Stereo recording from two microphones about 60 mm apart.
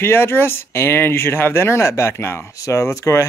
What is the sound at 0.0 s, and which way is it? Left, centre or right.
Speech, left.